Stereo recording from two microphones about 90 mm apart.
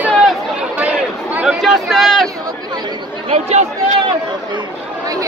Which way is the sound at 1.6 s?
Centre (ahead or behind).